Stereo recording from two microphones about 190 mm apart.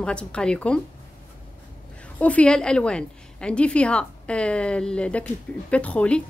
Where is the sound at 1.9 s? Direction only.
5° left (ahead or behind).